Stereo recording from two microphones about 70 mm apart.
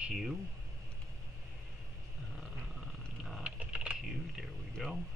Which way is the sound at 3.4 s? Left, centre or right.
Centre.